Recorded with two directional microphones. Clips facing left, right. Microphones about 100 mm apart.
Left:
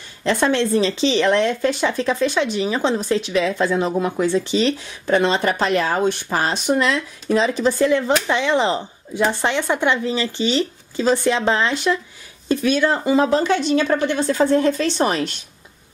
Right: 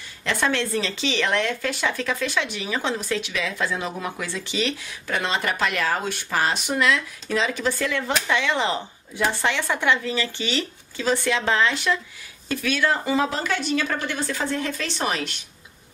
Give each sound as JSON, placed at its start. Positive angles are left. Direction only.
{"t": 0.2, "sound": "speech", "side_deg": 25}
{"t": 14.4, "sound": "speech", "side_deg": 40}